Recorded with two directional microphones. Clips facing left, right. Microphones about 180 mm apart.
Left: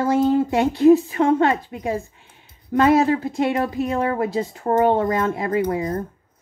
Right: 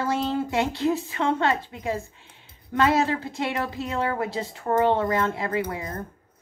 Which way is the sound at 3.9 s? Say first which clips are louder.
Left 5 dB; 25° left (ahead or behind).